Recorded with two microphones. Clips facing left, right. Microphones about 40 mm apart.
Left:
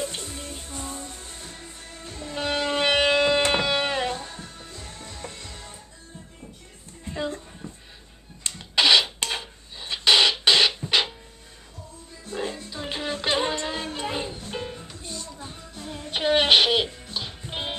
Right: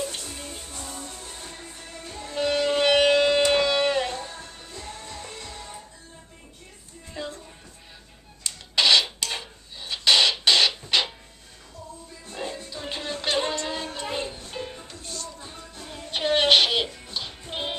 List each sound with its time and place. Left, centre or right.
0.3 s music: centre
0.7 s music: left
2.0 s music: centre
2.4 s music: centre
7.1 s a sound: left
8.7 s rub: centre
9.3 s music: centre
12.5 s music: centre